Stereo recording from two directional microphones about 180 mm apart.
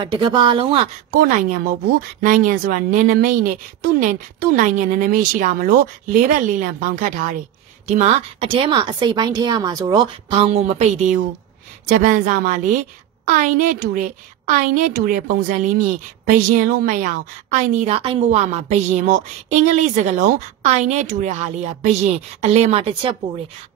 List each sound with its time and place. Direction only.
0.0 s a woman's voice: 25° right (ahead or behind)
1.1 s a woman's voice: 50° right (ahead or behind); by 22.9 s 35° right (ahead or behind)